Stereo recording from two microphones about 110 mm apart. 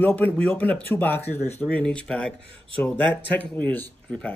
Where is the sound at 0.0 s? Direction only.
15° left (ahead or behind).